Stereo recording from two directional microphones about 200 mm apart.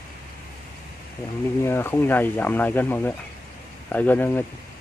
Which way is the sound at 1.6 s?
10° left (ahead or behind).